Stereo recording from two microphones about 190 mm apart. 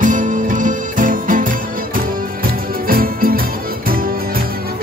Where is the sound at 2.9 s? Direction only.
50° right (ahead or behind).